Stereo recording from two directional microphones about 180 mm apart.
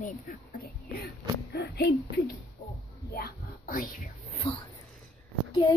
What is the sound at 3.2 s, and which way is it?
Whispering, 50° left (ahead or behind).